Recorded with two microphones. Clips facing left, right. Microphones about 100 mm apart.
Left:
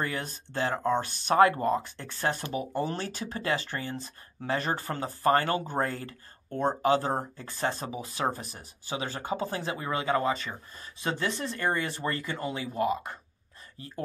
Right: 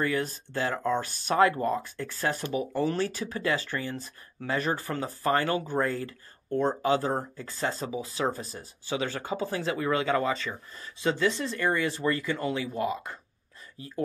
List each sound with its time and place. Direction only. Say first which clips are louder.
0.0 s speech: right 5 dB; 25° left (ahead or behind)
6.6 s speech: left 1 dB; 25° left (ahead or behind)